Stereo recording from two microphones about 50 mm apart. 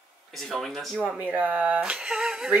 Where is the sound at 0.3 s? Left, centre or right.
Centre.